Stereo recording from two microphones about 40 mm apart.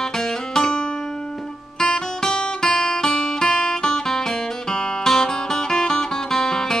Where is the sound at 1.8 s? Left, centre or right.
Centre.